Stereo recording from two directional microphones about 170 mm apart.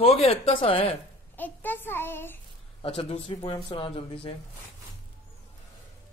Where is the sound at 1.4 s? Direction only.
10° left (ahead or behind).